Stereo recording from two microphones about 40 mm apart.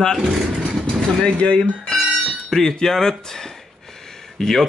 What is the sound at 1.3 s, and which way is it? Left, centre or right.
Speech, left.